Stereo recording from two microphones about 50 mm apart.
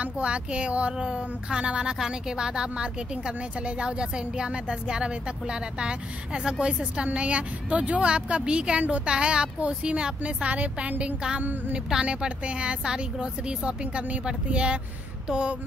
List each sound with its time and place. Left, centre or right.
0.0 s a woman's voice: right